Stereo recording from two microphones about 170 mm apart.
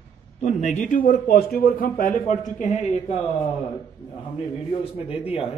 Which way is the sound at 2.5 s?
40° left (ahead or behind).